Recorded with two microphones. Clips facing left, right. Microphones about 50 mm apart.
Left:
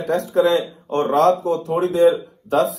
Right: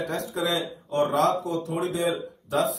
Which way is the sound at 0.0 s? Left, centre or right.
Left.